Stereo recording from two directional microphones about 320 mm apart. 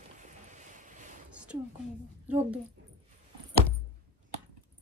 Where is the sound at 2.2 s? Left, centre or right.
Centre.